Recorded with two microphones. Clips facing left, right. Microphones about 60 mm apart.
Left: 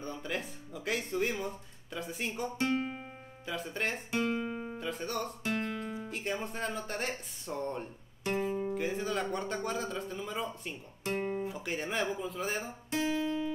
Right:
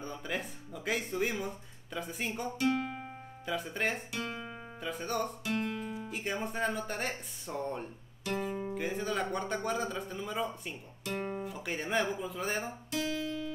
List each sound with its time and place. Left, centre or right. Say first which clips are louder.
0.0 s speech: even; centre
4.1 s speech: left 7 dB; left
4.5 s guitar: left 7 dB; centre
4.7 s speech: right 5 dB; centre
5.4 s music: even; left
6.0 s speech: right 1 dB; centre
8.2 s guitar: left 2 dB; left
8.5 s speech: left 2 dB; centre
12.9 s music: left 4 dB; left